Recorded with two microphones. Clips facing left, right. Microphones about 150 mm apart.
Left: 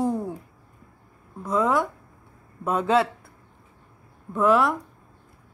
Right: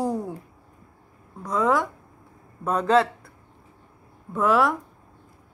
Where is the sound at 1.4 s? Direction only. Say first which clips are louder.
Even; centre (ahead or behind).